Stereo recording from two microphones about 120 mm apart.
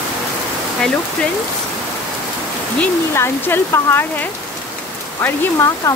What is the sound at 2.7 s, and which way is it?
Speech, 15° left (ahead or behind).